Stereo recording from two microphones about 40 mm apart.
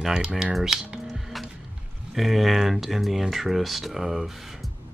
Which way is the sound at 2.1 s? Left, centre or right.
Centre.